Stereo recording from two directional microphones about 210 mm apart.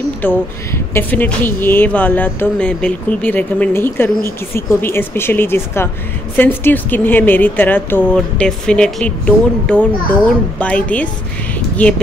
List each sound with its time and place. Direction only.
0.2 s a woman's voice: 10° left (ahead or behind)